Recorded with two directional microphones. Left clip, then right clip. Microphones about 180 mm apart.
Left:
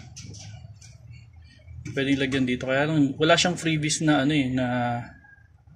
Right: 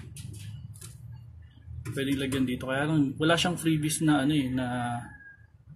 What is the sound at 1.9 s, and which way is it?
Speech, 30° left (ahead or behind).